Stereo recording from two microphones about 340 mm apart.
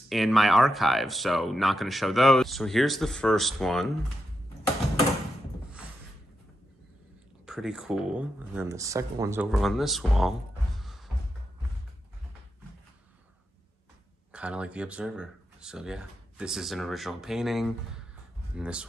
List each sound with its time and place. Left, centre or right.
0.1 s speech: centre
7.4 s speech: centre
10.8 s music: centre
14.3 s speech: centre